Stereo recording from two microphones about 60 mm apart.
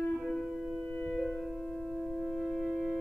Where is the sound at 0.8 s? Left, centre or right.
Left.